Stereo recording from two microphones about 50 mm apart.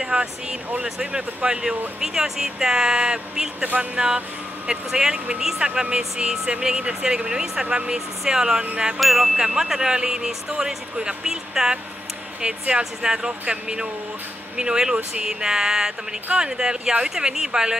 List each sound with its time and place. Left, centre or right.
0.0 s speech: centre
3.6 s speech: right
4.6 s speech: centre
9.0 s chime: centre
9.4 s speech: centre